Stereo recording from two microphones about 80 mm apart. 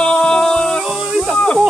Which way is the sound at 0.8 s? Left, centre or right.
Centre.